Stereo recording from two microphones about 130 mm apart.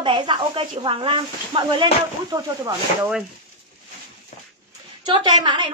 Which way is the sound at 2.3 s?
30° right (ahead or behind).